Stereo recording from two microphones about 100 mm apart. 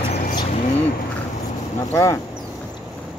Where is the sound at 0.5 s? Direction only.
90° left.